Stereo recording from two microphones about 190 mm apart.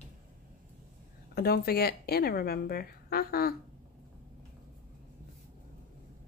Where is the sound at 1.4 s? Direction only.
55° left (ahead or behind).